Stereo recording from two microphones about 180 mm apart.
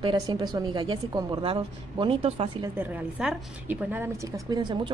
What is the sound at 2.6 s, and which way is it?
A woman's voice, 10° right (ahead or behind).